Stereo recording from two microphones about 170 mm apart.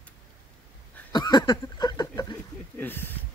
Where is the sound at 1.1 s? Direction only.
25° left (ahead or behind).